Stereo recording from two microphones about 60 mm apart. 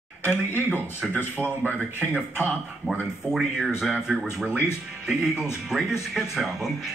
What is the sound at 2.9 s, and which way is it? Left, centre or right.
Speech, centre.